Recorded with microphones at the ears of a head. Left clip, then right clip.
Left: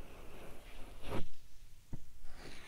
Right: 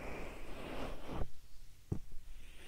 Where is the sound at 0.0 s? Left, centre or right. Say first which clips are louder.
Right 7 dB; right.